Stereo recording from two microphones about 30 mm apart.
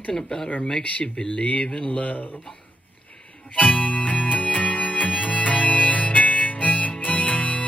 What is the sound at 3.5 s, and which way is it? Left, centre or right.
Music, left.